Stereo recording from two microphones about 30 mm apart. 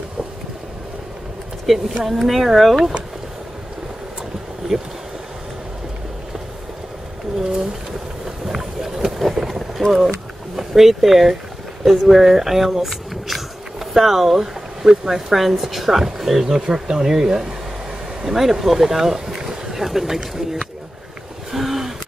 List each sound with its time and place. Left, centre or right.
1.7 s speech: centre
4.7 s speech: centre
8.5 s run: centre
9.3 s boat: centre
9.9 s speech: centre
16.4 s speech: right
21.5 s a sound: centre